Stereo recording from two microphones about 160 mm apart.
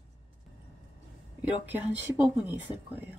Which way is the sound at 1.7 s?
10° right (ahead or behind).